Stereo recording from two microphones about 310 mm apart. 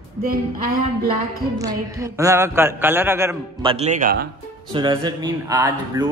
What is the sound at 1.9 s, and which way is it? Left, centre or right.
A man's voice, centre.